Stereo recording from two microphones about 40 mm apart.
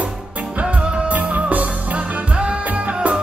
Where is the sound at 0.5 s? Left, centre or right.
Right.